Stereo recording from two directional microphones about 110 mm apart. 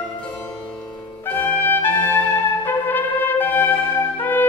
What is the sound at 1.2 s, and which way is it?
Brass instrument, 15° left (ahead or behind).